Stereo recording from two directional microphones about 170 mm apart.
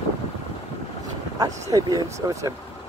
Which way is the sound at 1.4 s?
20° right (ahead or behind).